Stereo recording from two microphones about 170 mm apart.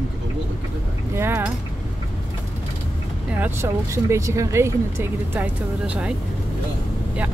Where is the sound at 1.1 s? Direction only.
15° right (ahead or behind).